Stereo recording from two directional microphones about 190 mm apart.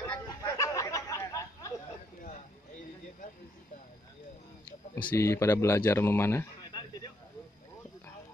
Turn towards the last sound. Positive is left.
turn(degrees=20)  # may be behind; listen again after turning